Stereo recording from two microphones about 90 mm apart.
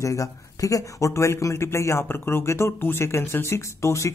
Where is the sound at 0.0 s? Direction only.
35° left (ahead or behind).